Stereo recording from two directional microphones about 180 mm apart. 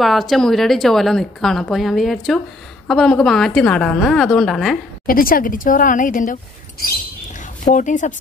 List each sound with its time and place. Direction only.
0.0 s speech: centre (ahead or behind)
5.0 s a woman's voice: 50° left (ahead or behind)
7.3 s a sound: 45° left (ahead or behind)